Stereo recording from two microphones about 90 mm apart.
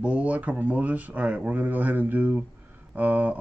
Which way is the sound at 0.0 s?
15° right (ahead or behind).